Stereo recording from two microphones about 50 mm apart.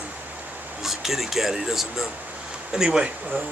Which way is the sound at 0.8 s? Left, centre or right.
Centre.